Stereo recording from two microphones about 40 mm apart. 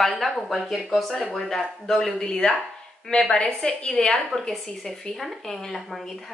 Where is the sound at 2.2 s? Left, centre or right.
Centre.